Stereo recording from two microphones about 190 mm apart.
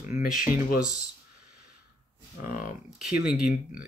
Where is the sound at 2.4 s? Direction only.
45° left (ahead or behind).